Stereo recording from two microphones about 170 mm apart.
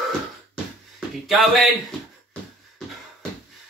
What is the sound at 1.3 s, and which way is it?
Speech, centre (ahead or behind).